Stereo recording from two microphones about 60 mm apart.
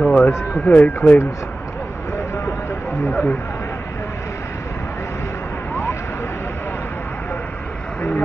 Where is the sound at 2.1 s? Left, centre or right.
Left.